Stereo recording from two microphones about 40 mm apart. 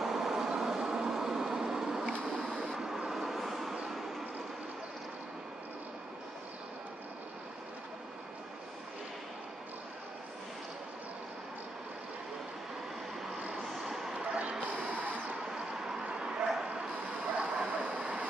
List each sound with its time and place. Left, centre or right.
0.0 s vehicle: centre
2.3 s printer: right
2.8 s vehicle: centre
13.7 s vehicle: centre
14.3 s bow-wow: right
14.7 s vehicle: right
15.5 s dog: centre
16.6 s vehicle: right